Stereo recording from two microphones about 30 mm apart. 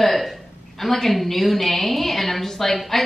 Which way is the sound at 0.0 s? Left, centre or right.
Centre.